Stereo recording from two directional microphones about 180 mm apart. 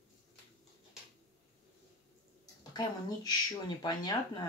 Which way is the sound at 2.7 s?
20° left (ahead or behind).